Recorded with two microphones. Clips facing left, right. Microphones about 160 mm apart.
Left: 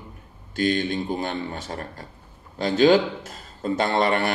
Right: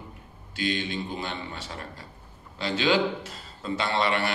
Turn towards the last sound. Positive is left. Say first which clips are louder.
# left 5 dB
turn(degrees=50)  # may be behind; listen again after turning